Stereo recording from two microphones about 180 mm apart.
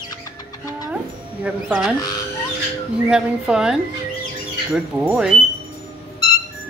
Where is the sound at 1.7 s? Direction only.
Centre (ahead or behind).